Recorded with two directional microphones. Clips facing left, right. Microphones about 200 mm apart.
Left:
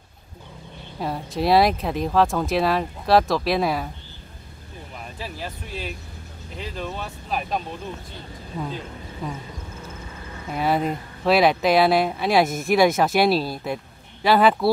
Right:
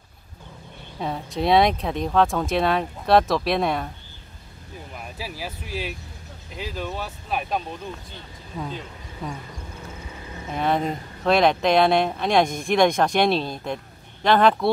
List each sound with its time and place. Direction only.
0.9 s speech: centre (ahead or behind)
5.2 s speech: 5° right (ahead or behind)
10.5 s speech: 5° left (ahead or behind)